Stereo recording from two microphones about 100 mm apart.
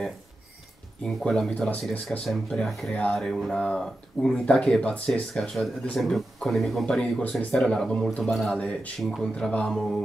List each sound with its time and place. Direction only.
1.0 s speech: 5° left (ahead or behind)